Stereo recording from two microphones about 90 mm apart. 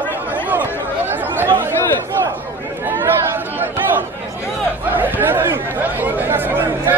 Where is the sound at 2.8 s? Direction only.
25° right (ahead or behind).